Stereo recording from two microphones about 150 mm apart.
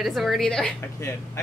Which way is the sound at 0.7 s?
20° left (ahead or behind).